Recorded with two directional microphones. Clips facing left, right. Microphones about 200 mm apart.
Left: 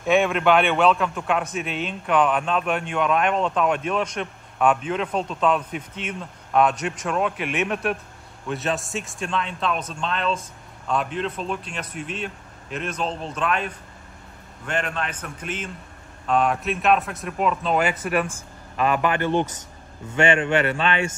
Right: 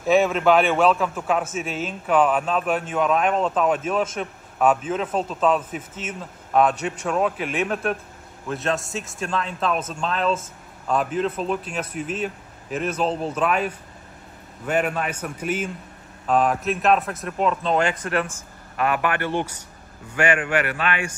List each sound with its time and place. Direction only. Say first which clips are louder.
0.0 s a man's voice: right 1 dB; 5° right (ahead or behind); by 21.2 s 25° left (ahead or behind)